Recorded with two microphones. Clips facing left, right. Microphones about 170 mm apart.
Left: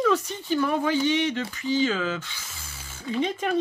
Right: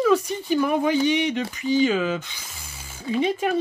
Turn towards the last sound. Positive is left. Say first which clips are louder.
# right 3 dB
turn(degrees=-10)  # may be behind; listen again after turning